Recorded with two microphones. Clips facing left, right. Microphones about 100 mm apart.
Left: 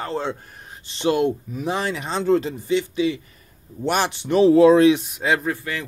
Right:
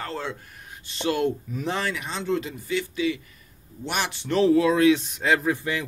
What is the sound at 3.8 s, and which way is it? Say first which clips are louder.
Speech: left 7 dB; 40° left (ahead or behind).